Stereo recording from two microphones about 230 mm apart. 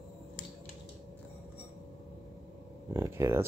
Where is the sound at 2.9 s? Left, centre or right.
Centre.